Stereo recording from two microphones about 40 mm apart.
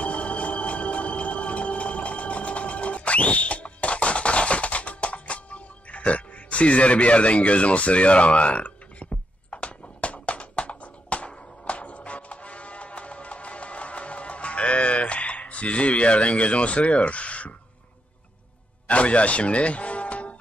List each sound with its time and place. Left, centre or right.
0.0 s music: left
18.9 s speech: left